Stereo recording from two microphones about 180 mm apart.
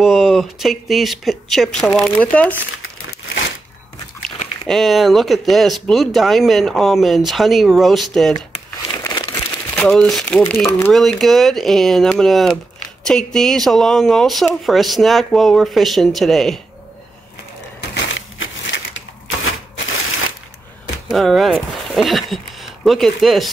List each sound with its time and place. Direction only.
0.0 s speech: centre (ahead or behind)
4.6 s speech: centre (ahead or behind)
8.9 s speech: 20° left (ahead or behind); by 16.5 s centre (ahead or behind)
17.9 s crushing: 90° left
21.1 s speech: centre (ahead or behind)